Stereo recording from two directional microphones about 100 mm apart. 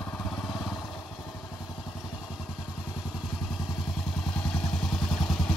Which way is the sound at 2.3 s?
5° right (ahead or behind).